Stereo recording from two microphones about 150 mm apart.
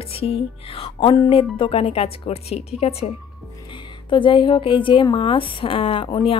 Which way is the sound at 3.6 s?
30° left (ahead or behind).